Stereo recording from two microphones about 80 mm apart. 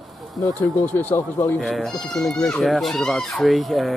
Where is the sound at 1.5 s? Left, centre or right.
Centre.